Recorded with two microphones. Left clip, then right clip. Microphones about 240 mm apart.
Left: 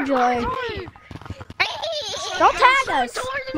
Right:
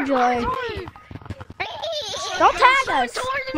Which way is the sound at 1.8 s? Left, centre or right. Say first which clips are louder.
Even; centre.